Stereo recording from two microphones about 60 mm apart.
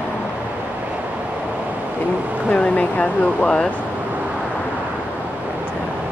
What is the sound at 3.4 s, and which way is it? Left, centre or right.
Speech, centre.